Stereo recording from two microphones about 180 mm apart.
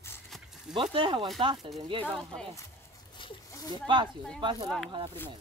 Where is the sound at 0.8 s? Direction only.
30° right (ahead or behind).